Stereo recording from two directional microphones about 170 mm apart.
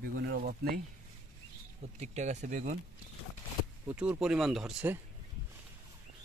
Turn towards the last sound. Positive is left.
turn(degrees=0)  # may be behind; listen again after turning